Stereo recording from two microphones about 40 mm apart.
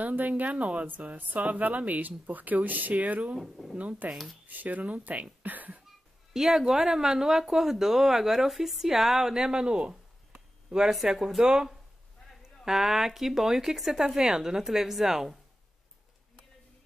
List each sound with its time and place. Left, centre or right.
0.0 s speech: right
3.3 s speech: centre
3.7 s speech: right
4.1 s speech: centre
4.5 s speech: right
6.3 s speech: centre